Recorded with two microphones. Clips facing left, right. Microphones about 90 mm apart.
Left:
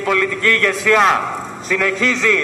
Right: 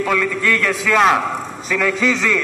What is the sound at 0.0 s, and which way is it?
A man's voice, centre (ahead or behind).